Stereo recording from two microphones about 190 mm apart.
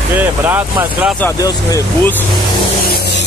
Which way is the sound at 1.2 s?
15° left (ahead or behind).